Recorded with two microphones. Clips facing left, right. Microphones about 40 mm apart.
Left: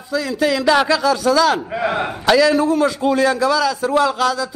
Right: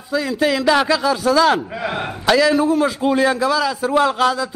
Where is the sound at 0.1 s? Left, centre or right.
Centre.